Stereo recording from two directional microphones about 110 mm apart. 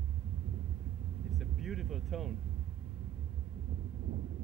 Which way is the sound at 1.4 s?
Centre (ahead or behind).